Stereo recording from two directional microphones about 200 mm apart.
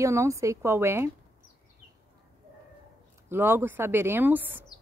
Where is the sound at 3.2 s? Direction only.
10° right (ahead or behind).